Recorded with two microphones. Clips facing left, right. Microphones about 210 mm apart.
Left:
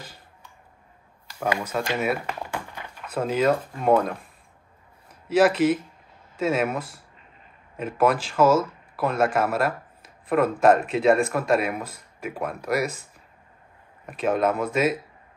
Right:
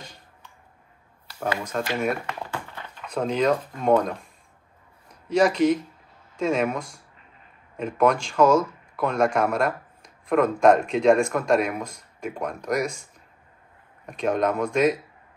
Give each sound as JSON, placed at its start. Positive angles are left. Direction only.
{"t": 1.4, "sound": "speech", "side_deg": 10}
{"t": 5.3, "sound": "speech", "side_deg": 5}
{"t": 14.0, "sound": "speech", "side_deg": 5}